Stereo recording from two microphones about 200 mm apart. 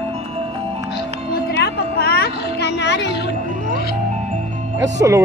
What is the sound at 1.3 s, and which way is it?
Music, 55° left (ahead or behind).